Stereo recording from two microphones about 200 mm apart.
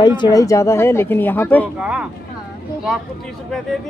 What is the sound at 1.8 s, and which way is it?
Speech, 5° right (ahead or behind).